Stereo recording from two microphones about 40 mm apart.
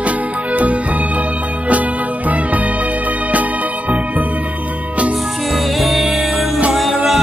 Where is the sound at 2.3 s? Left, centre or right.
Right.